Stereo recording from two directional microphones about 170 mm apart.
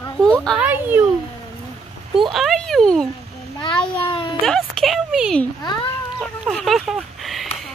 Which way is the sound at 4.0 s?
30° left (ahead or behind).